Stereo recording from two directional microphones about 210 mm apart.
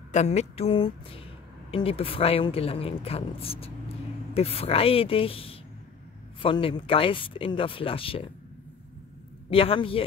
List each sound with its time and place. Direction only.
0.1 s speech: 35° left (ahead or behind)
9.5 s speech: 25° left (ahead or behind)